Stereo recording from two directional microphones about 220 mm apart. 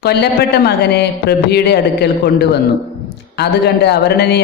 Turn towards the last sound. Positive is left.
turn(degrees=50)  # may be behind; listen again after turning